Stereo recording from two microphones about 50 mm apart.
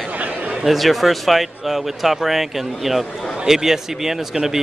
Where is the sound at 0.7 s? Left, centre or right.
Centre.